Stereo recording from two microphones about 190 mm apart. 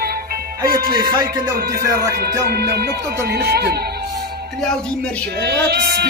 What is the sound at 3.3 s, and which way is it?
Speech, 55° right (ahead or behind).